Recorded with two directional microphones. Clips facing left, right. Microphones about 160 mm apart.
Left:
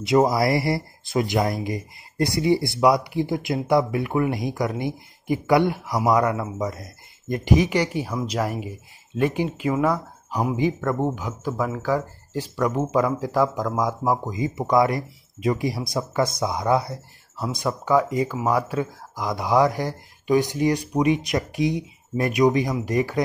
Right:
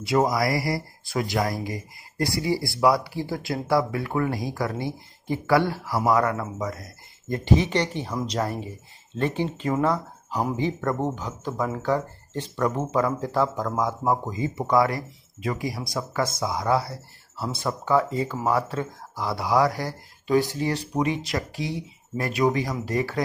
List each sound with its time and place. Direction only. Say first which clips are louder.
0.0 s speech: left 3 dB; 20° left (ahead or behind)